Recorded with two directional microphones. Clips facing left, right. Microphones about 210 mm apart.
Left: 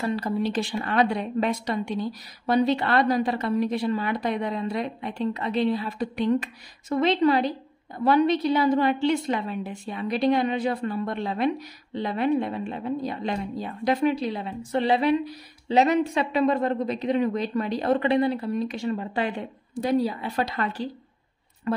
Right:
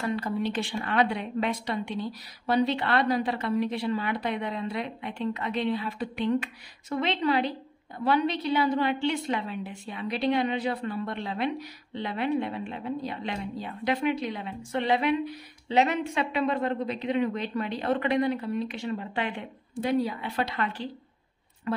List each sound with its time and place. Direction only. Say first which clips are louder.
0.0 s a woman's voice: left 3 dB; 35° left (ahead or behind)